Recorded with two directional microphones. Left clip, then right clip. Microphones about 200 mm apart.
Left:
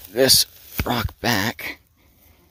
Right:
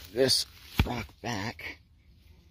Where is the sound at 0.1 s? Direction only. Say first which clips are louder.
Left 9 dB; 30° left (ahead or behind).